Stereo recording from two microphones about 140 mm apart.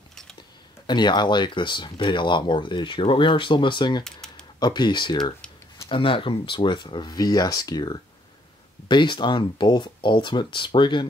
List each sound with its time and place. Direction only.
0.1 s a sound: 5° left (ahead or behind)
0.8 s speech: 30° left (ahead or behind)
4.0 s typing: 5° left (ahead or behind)
4.6 s speech: 30° left (ahead or behind)